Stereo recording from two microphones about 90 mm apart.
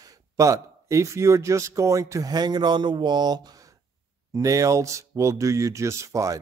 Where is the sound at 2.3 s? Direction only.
50° right (ahead or behind).